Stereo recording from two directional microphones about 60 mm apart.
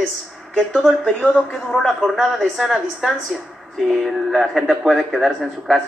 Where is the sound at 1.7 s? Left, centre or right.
Centre.